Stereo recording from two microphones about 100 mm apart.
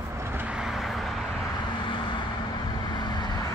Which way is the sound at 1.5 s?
55° left (ahead or behind).